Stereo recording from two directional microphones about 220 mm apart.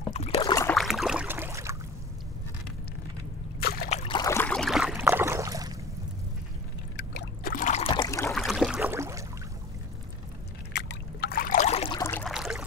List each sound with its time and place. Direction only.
0.1 s rowboat: 25° left (ahead or behind)
0.7 s boat: centre (ahead or behind)
3.5 s a sound: 45° left (ahead or behind)
3.9 s boat: 25° left (ahead or behind)
4.2 s boat: 10° left (ahead or behind)
5.0 s a sound: 10° right (ahead or behind)
7.0 s rowboat: 45° left (ahead or behind); by 8.3 s 15° left (ahead or behind)
8.3 s boat: centre (ahead or behind)
10.7 s boat: 45° left (ahead or behind); by 12.0 s 25° left (ahead or behind)
12.0 s a sound: 5° left (ahead or behind)